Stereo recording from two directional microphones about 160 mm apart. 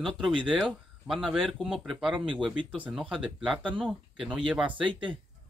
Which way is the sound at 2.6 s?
30° right (ahead or behind).